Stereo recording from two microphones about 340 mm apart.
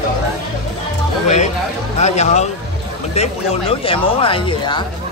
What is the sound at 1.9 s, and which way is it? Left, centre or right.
Music, centre.